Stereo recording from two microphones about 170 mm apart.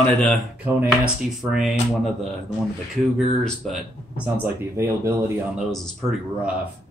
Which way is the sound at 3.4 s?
Centre (ahead or behind).